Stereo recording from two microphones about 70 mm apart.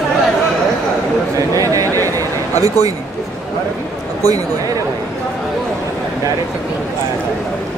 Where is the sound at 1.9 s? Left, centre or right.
Right.